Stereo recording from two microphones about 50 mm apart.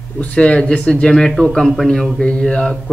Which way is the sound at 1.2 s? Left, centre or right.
Centre.